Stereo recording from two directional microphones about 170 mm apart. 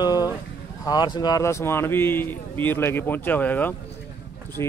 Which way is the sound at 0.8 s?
25° left (ahead or behind).